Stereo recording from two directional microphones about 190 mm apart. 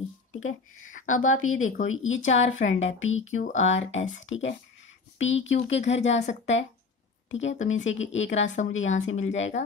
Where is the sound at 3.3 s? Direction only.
40° left (ahead or behind).